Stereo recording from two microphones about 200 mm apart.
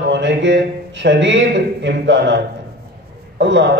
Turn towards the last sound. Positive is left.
turn(degrees=-60)  # may be behind; listen again after turning